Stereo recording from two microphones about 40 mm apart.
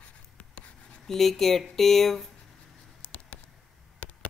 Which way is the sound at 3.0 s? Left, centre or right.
Left.